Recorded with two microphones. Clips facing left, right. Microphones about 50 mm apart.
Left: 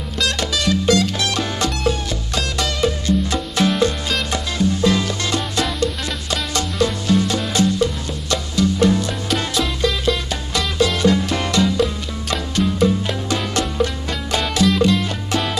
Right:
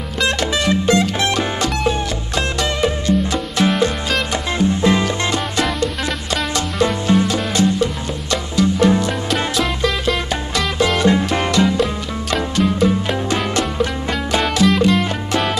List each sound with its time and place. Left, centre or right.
0.2 s music: right
4.6 s music: right
7.1 s music: right
8.5 s music: right
9.3 s music: centre
11.0 s music: right
14.4 s music: centre